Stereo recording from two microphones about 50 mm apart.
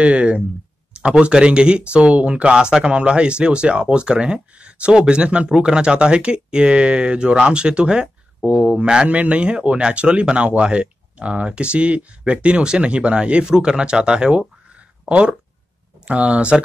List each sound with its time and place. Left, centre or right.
0.0 s speech: right